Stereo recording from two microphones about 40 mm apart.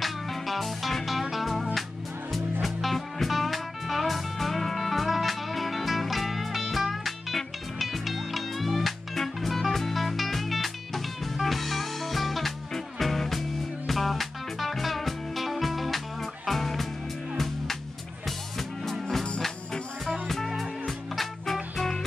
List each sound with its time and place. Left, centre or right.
0.0 s music: centre
20.1 s music: centre